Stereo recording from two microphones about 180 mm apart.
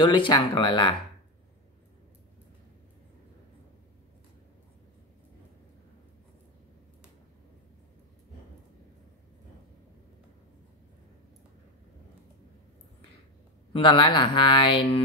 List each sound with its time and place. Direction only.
0.0 s speech: 25° left (ahead or behind)
13.7 s speech: 30° left (ahead or behind)